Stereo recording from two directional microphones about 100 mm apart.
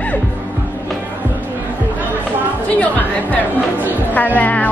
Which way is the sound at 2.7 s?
15° left (ahead or behind).